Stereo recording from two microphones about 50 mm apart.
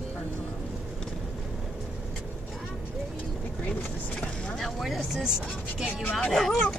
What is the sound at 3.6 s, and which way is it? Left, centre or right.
Vehicle, left.